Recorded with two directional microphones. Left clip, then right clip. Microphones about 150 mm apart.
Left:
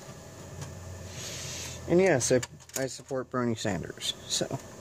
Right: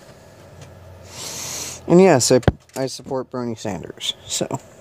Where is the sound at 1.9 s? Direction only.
35° right (ahead or behind).